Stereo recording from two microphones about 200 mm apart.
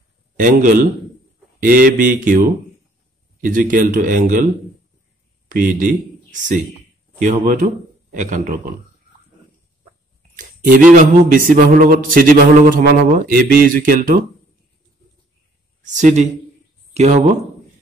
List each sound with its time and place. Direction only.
0.4 s a man's voice: 40° right (ahead or behind)
5.5 s a man's voice: 45° right (ahead or behind)
10.3 s speech: 40° right (ahead or behind)
15.8 s speech: 40° right (ahead or behind)